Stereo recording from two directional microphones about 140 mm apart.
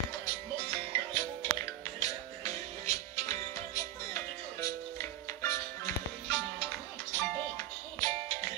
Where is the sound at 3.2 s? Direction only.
25° left (ahead or behind).